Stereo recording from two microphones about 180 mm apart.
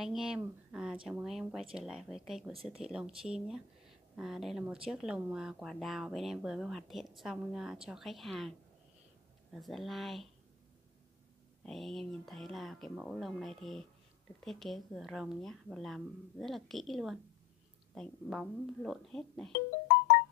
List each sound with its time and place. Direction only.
0.0 s speech: centre (ahead or behind)
2.5 s speech: 30° right (ahead or behind)
2.8 s speech: 5° right (ahead or behind)
11.6 s speech: centre (ahead or behind)